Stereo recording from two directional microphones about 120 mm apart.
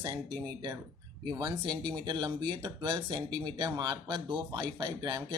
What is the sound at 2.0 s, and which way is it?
Speech, 40° right (ahead or behind).